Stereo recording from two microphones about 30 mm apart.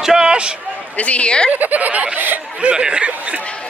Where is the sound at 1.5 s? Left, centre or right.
Right.